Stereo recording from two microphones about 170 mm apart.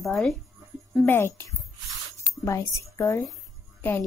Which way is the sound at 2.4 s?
20° left (ahead or behind).